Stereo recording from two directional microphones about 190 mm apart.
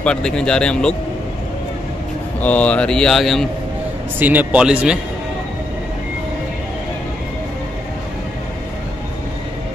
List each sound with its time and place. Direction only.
0.0 s speech: 5° left (ahead or behind)
2.4 s speech: 5° left (ahead or behind)
4.2 s a man's voice: 10° right (ahead or behind)